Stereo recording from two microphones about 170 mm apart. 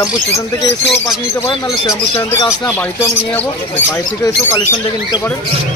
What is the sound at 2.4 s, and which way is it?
Speech, 20° left (ahead or behind).